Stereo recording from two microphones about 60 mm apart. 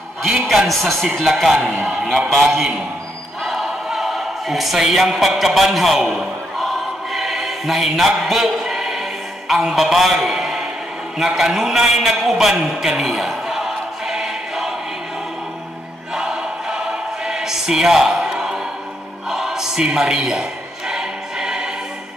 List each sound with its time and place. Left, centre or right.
0.5 s speech: centre
1.6 s a man's voice: right
1.9 s speech: centre
3.4 s choir: centre
9.5 s a man's voice: centre
16.2 s choir: centre
19.2 s a sound: centre